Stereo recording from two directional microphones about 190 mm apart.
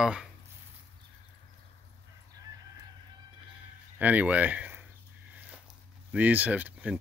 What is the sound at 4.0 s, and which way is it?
Speech, 10° right (ahead or behind).